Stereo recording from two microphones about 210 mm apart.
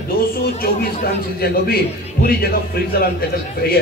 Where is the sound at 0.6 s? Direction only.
45° left (ahead or behind).